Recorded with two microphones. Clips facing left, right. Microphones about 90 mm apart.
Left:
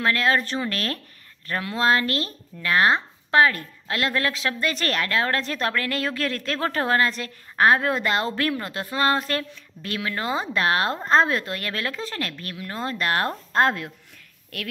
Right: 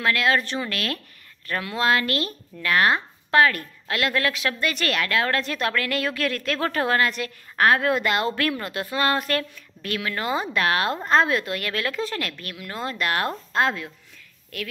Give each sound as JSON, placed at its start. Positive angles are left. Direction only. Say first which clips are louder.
{"t": 0.0, "sound": "a woman's voice", "louder": "even", "side_deg": 35}